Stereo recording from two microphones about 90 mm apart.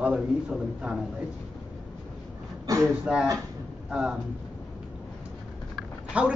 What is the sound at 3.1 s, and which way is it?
Speech, 10° right (ahead or behind).